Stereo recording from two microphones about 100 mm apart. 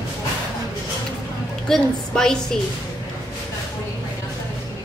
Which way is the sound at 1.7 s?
5° left (ahead or behind).